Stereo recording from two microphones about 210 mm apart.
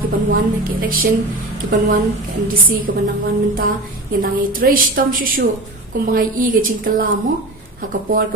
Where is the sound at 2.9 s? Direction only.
50° right (ahead or behind).